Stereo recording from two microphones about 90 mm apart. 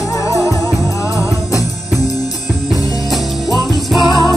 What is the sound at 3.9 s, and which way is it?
Music, 55° left (ahead or behind).